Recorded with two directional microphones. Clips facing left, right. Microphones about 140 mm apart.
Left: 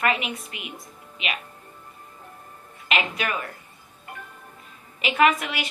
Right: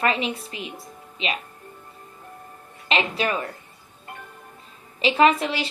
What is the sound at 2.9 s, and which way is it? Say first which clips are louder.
Speech: right 3 dB; 30° right (ahead or behind).